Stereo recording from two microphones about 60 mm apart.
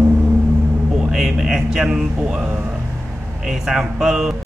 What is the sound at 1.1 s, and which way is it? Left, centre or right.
A man's voice, centre.